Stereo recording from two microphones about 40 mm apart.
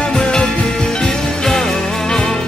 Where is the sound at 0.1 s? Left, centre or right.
Left.